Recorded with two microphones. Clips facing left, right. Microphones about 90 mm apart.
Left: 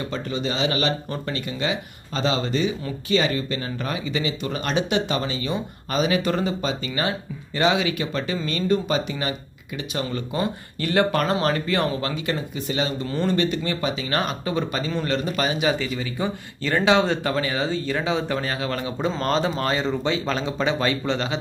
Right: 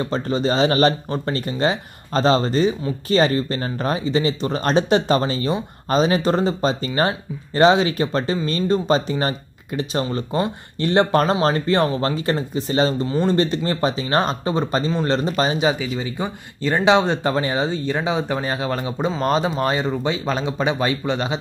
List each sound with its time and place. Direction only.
0.0 s speech: 35° right (ahead or behind)
13.0 s speech: 20° right (ahead or behind)
13.4 s speech: 35° right (ahead or behind)
14.9 s speech: 20° right (ahead or behind)